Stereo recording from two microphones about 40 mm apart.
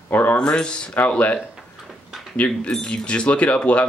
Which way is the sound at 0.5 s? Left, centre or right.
Left.